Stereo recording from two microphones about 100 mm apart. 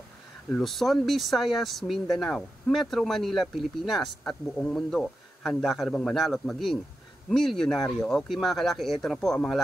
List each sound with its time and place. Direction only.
0.5 s speech: centre (ahead or behind)